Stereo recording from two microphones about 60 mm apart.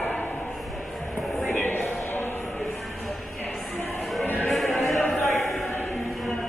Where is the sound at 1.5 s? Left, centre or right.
Left.